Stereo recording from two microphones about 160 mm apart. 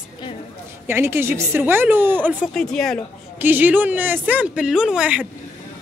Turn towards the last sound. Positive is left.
turn(degrees=-5)  # may be behind; listen again after turning